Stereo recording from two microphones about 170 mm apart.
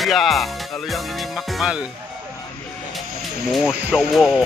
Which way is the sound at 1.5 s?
5° right (ahead or behind).